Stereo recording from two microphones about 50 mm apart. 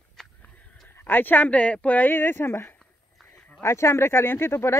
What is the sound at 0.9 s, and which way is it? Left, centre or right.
Speech, left.